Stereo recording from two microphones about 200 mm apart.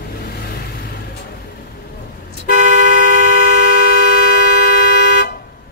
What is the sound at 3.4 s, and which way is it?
Vehicle, 55° left (ahead or behind).